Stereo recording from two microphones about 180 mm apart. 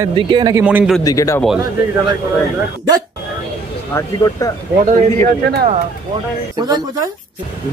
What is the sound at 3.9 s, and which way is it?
Speech, 20° left (ahead or behind).